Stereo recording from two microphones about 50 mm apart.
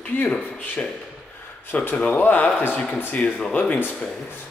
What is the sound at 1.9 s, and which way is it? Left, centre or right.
Speech, left.